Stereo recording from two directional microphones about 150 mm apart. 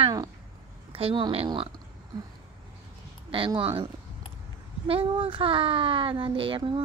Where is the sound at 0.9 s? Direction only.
35° right (ahead or behind).